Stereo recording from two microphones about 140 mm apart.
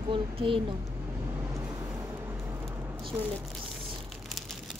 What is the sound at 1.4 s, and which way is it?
Vehicle, 15° right (ahead or behind).